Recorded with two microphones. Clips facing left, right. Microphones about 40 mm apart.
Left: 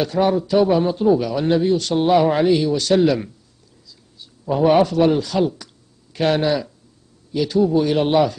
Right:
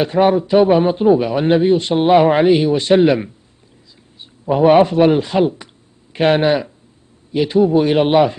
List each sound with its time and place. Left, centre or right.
0.0 s a man's voice: right